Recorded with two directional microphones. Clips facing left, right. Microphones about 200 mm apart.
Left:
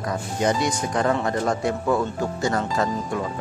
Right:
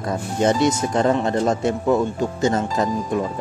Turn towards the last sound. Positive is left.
turn(degrees=-20)  # may be behind; listen again after turning